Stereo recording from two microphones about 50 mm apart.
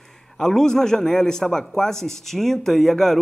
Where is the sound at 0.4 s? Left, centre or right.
Centre.